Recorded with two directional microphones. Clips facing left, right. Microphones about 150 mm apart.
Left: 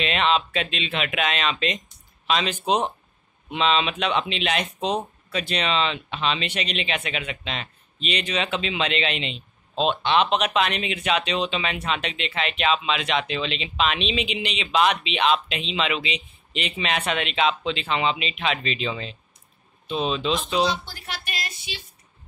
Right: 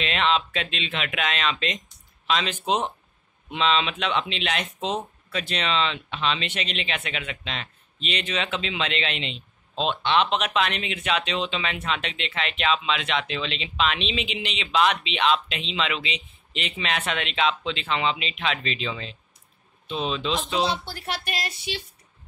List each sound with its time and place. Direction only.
0.0 s speech: 15° left (ahead or behind)
20.5 s speech: 30° right (ahead or behind)